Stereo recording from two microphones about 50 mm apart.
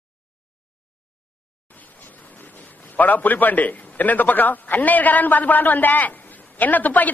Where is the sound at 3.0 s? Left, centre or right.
Left.